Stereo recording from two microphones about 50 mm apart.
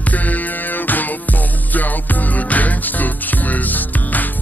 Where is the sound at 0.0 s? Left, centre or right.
Left.